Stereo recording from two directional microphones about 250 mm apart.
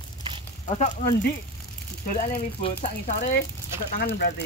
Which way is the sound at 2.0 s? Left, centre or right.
Left.